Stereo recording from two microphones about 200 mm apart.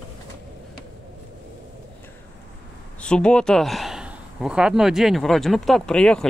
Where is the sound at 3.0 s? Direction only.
5° left (ahead or behind).